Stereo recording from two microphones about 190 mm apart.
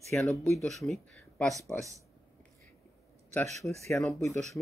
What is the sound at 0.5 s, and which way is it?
Speech, centre (ahead or behind).